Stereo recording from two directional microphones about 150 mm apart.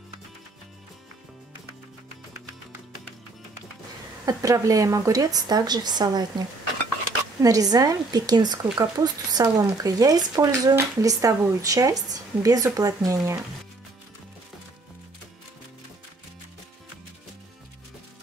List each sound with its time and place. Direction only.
4.3 s speech: 20° right (ahead or behind)
7.4 s speech: 25° right (ahead or behind)